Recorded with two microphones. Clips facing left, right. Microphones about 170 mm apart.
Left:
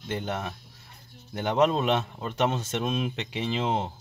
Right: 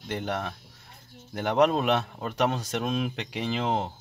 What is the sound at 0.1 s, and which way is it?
Speech, 5° left (ahead or behind).